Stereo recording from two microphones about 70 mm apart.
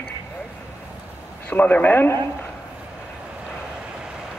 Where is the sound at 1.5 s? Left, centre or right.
Left.